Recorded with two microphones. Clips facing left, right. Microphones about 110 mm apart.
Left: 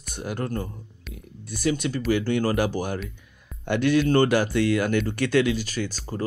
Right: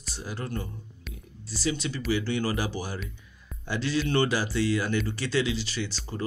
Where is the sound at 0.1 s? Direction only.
55° left (ahead or behind).